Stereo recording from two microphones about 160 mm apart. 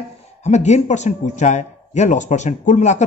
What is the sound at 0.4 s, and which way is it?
A man's voice, 45° left (ahead or behind).